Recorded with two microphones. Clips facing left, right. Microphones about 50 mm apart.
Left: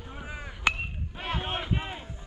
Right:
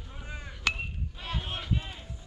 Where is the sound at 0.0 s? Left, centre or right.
Centre.